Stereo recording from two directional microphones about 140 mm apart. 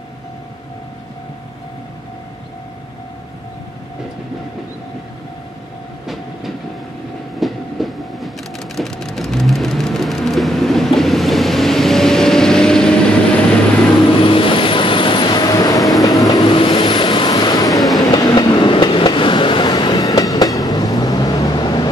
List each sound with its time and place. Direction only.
7.3 s train: centre (ahead or behind)
14.2 s vehicle: 40° left (ahead or behind)
17.7 s vehicle: centre (ahead or behind)
18.0 s train: 30° left (ahead or behind)